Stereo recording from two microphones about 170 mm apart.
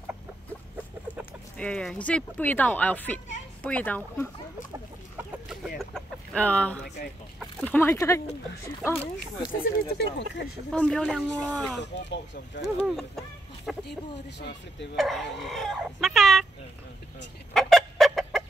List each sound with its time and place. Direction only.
1.6 s speech: 5° left (ahead or behind)
5.5 s a sound: centre (ahead or behind)
7.6 s speech: 10° left (ahead or behind)
9.0 s speech: 60° left (ahead or behind)
9.9 s speech: 90° left
10.7 s speech: 5° left (ahead or behind)
11.8 s speech: 90° left
12.6 s speech: centre (ahead or behind)
13.7 s a sound: centre (ahead or behind)
15.0 s speech: centre (ahead or behind)
17.6 s chicken: centre (ahead or behind)